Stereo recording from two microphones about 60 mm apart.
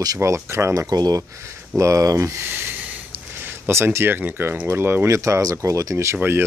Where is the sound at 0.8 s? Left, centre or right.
Right.